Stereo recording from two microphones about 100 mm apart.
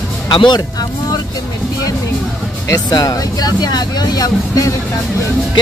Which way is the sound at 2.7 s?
35° left (ahead or behind).